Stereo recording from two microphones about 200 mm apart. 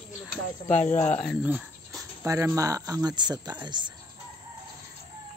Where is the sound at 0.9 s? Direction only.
10° left (ahead or behind).